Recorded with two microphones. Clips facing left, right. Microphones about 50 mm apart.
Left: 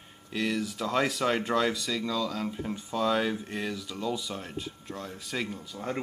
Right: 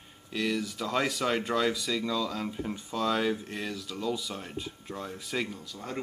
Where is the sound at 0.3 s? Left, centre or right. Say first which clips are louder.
Even; centre.